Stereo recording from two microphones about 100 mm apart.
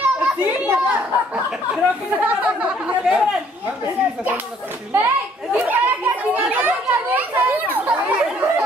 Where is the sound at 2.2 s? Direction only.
15° right (ahead or behind).